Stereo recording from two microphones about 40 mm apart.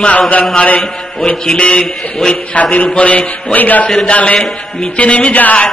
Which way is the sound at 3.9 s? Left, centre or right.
Left.